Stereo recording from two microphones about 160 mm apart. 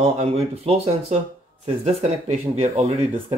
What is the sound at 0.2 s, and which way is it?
Speech, 35° right (ahead or behind).